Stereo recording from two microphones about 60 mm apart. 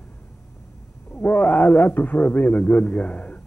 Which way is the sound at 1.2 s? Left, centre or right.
Left.